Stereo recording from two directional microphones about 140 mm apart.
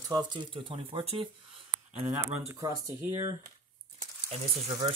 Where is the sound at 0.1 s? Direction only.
30° right (ahead or behind); by 2.2 s 50° right (ahead or behind).